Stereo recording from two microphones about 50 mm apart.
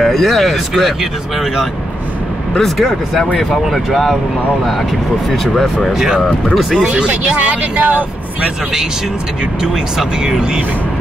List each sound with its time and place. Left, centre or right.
0.0 s speech: centre
3.3 s speech: centre
5.3 s speech: centre
5.9 s speech: centre
6.5 s speech: centre
6.8 s speech: right
9.6 s speech: centre